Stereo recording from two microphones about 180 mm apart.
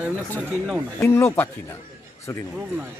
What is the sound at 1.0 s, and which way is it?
Speech, 15° left (ahead or behind).